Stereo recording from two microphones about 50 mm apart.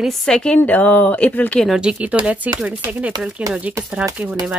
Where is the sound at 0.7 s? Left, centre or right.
Left.